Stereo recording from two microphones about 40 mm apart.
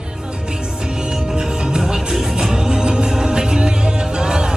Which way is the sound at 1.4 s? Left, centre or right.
Centre.